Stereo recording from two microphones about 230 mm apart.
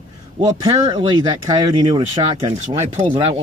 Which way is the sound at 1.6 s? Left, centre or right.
Centre.